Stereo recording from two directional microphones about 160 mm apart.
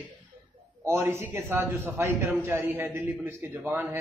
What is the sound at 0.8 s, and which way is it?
A man's voice, 15° right (ahead or behind).